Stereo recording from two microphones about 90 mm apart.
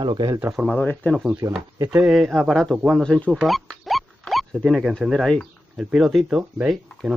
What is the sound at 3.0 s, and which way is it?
Speech, 10° left (ahead or behind).